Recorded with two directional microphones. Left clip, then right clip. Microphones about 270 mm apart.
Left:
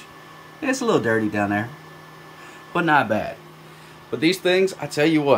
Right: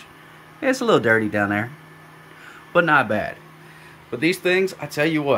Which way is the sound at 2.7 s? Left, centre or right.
Centre.